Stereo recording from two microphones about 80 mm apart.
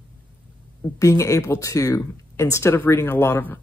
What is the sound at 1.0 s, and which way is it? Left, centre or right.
Speech, left.